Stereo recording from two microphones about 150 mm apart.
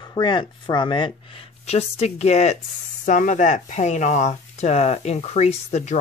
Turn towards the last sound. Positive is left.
turn(degrees=45)  # may be behind; listen again after turning